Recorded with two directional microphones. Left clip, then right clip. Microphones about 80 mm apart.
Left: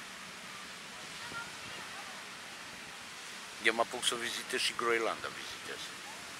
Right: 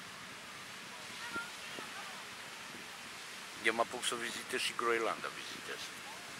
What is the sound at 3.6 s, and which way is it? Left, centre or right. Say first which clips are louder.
Speech: left 3 dB; centre.